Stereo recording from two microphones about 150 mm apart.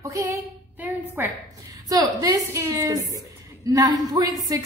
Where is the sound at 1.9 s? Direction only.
25° right (ahead or behind).